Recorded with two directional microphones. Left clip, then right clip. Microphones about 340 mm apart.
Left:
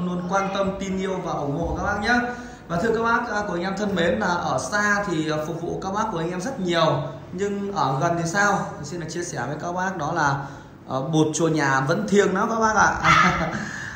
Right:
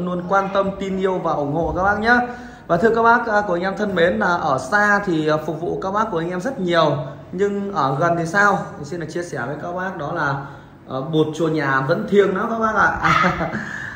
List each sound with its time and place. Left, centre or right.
0.1 s speech: centre